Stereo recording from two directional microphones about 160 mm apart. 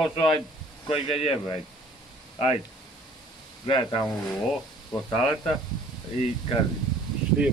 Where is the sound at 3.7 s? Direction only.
30° left (ahead or behind).